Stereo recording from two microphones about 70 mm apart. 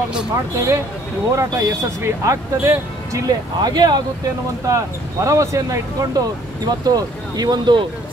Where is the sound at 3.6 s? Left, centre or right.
Right.